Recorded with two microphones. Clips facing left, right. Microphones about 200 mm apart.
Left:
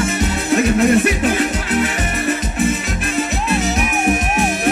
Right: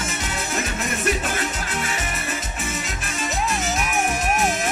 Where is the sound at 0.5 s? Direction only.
60° left (ahead or behind).